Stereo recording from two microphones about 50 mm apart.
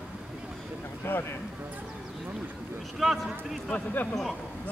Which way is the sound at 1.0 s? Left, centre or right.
Left.